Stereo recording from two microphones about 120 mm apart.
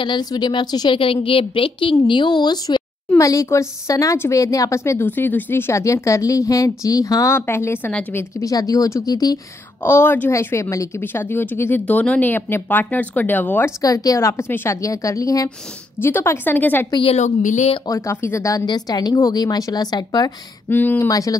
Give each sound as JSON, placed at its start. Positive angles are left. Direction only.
{"t": 0.0, "sound": "a woman's voice", "side_deg": 40}
{"t": 3.2, "sound": "speech", "side_deg": 25}
{"t": 9.8, "sound": "a woman's voice", "side_deg": 20}
{"t": 13.8, "sound": "a woman's voice", "side_deg": 30}
{"t": 16.9, "sound": "a woman's voice", "side_deg": 50}
{"t": 17.2, "sound": "speech", "side_deg": 85}
{"t": 17.8, "sound": "speech", "side_deg": 25}
{"t": 18.7, "sound": "speech", "side_deg": 35}
{"t": 20.7, "sound": "a woman's voice", "side_deg": 15}
{"t": 21.1, "sound": "speech", "side_deg": 30}